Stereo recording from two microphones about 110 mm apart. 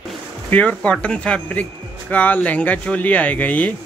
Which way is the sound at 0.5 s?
15° left (ahead or behind).